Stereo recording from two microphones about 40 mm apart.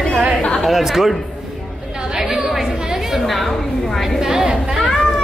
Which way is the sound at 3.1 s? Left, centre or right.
Centre.